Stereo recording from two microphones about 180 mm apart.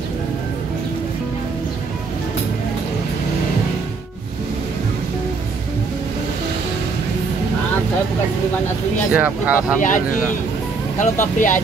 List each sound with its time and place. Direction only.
9.1 s speech: 5° right (ahead or behind)
11.0 s speech: 45° left (ahead or behind)